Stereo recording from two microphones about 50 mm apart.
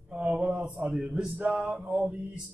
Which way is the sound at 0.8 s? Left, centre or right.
Centre.